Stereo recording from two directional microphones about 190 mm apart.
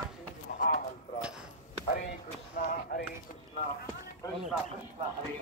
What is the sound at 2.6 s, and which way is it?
Speech, 55° left (ahead or behind).